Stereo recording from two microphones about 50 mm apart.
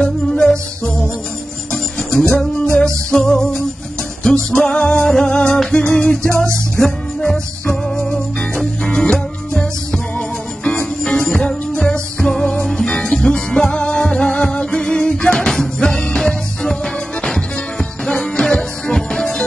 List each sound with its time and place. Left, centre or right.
0.0 s music: centre
2.4 s music: centre; by 10.9 s left
11.1 s music: centre